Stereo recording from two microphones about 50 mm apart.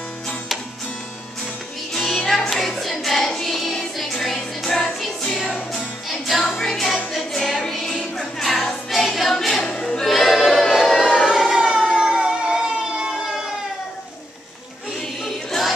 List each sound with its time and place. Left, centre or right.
2.0 s music: centre
9.7 s choir: left
9.9 s choir: centre
11.6 s a sound: centre
15.2 s music: centre